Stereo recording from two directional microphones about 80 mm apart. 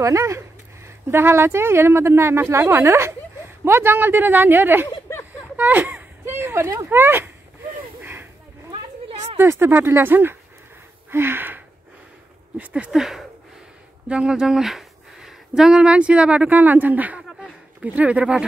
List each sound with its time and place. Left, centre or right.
0.0 s speech: right
5.6 s a sound: right
6.9 s speech: right
8.0 s a sound: right
9.4 s speech: right
11.1 s gasp: right
12.5 s speech: centre